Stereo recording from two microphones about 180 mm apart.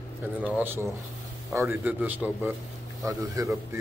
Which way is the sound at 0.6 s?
10° right (ahead or behind).